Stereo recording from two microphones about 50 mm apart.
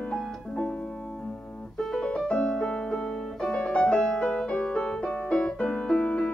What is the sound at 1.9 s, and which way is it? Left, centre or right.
Music, centre.